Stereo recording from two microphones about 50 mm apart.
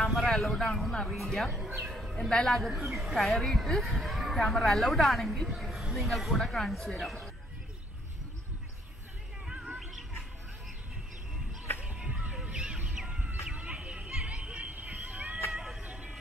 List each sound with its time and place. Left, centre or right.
0.0 s speech: centre
2.1 s a woman's voice: centre
9.8 s a sound: centre
12.0 s a sound: right
12.8 s chicken: centre
13.7 s a sound: centre
14.2 s music: centre
14.7 s vehicle: right
15.5 s music: centre
15.8 s vehicle: right